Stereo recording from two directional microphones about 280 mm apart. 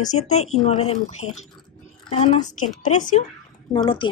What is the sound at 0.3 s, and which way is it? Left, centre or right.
A woman's voice, left.